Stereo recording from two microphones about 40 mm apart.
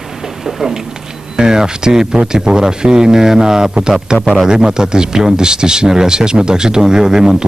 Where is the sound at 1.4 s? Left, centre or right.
Centre.